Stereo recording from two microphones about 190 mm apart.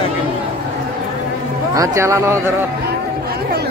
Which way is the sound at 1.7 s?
15° right (ahead or behind).